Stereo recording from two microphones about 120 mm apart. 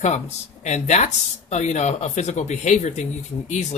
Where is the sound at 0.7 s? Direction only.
75° left (ahead or behind).